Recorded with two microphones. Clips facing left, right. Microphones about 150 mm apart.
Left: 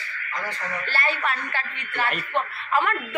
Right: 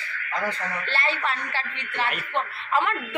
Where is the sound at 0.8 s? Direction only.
25° right (ahead or behind).